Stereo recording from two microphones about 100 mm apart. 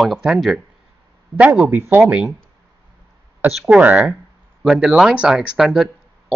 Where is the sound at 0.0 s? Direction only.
5° right (ahead or behind).